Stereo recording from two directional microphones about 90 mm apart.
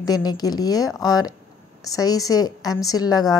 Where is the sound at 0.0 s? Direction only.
50° left (ahead or behind).